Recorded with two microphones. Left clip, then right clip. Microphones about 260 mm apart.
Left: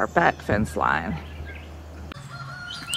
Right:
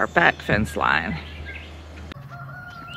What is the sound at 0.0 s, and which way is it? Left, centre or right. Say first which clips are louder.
Speech: right 2 dB; centre.